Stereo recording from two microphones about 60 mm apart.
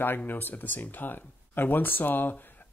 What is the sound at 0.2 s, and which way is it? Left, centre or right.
Speech, left.